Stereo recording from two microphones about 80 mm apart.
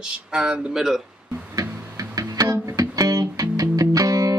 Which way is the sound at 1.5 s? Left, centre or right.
Right.